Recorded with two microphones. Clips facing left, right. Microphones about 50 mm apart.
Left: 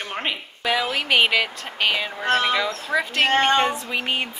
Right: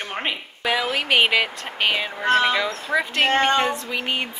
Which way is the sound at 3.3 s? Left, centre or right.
Left.